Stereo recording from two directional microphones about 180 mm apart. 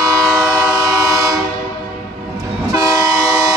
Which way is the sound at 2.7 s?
20° right (ahead or behind).